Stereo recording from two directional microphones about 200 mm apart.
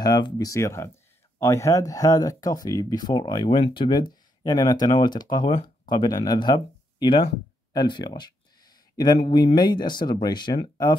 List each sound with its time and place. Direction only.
0.0 s speech: 20° left (ahead or behind)